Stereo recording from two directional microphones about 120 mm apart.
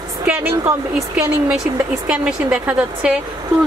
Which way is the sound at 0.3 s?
15° right (ahead or behind).